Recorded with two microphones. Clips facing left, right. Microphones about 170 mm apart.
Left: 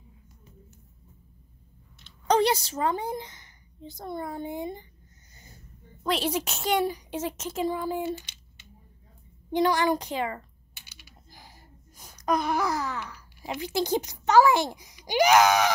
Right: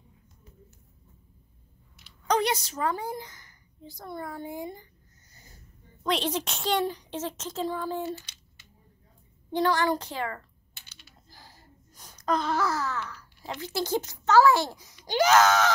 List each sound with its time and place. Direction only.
2.2 s a woman's voice: 30° left (ahead or behind)
6.0 s speech: 5° left (ahead or behind)
8.0 s a sound: 20° left (ahead or behind)
9.5 s speech: 15° left (ahead or behind)